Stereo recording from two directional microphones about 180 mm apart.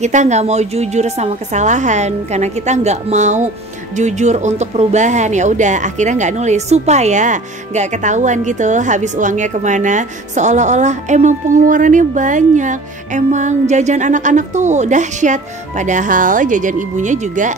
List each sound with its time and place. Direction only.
0.0 s a woman's voice: 40° right (ahead or behind)